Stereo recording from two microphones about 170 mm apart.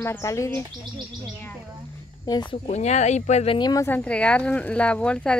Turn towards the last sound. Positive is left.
turn(degrees=5)  # may be behind; listen again after turning